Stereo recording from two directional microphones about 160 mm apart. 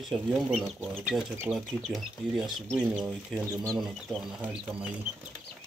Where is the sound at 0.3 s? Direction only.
Centre (ahead or behind).